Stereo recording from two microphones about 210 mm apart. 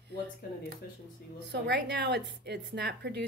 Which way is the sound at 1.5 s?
55° right (ahead or behind).